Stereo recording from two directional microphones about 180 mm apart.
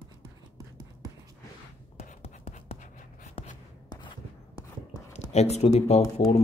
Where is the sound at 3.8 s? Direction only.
20° left (ahead or behind).